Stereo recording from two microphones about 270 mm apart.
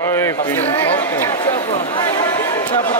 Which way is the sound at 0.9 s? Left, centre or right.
Centre.